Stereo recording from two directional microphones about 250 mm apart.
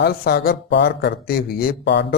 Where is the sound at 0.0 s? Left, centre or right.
Left.